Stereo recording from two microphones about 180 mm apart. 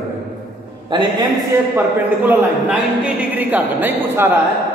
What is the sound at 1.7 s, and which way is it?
A man's voice, 10° right (ahead or behind).